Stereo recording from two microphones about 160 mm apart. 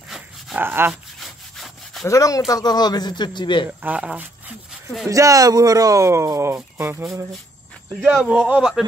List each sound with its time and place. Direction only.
0.6 s a man's voice: 15° right (ahead or behind)
1.2 s sawing: centre (ahead or behind)
2.0 s speech: 20° left (ahead or behind)
3.8 s speech: 10° right (ahead or behind)
5.1 s a man's voice: 20° right (ahead or behind); by 8.8 s 5° right (ahead or behind)